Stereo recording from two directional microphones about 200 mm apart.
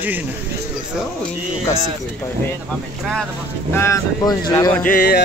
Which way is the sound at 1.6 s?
15° left (ahead or behind).